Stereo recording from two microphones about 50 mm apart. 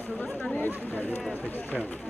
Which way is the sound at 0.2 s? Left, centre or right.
Left.